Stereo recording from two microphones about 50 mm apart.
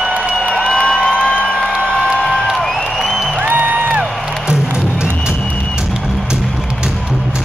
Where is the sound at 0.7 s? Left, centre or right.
Centre.